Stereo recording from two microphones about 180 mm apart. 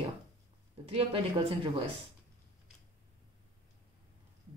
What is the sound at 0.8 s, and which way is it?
Speech, 35° right (ahead or behind).